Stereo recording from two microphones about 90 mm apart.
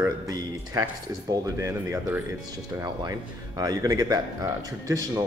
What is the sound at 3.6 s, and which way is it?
Speech, 45° right (ahead or behind).